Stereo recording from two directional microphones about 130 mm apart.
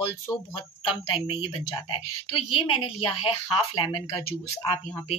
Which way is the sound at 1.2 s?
40° left (ahead or behind).